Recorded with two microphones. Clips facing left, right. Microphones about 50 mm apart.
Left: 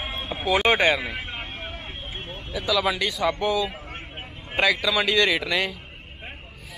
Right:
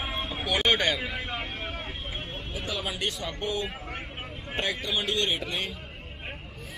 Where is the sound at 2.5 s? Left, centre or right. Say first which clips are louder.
Left 10 dB; left.